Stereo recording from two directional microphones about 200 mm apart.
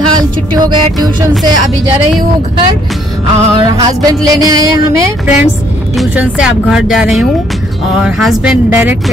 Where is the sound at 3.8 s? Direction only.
20° right (ahead or behind).